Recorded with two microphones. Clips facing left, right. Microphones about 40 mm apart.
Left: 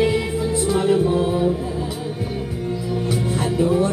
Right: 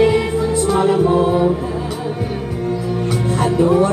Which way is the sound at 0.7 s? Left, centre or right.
Centre.